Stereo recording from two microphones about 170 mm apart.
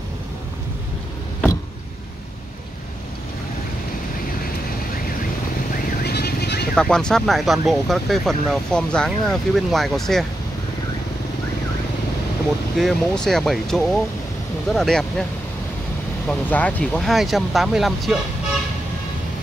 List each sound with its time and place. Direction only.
6.0 s vehicle: 70° left (ahead or behind)
6.7 s speech: 5° left (ahead or behind)
12.7 s speech: centre (ahead or behind)
16.3 s speech: 10° left (ahead or behind)